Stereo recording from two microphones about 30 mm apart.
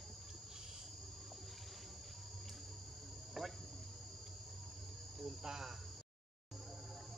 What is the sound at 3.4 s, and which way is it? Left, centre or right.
Cricket, centre.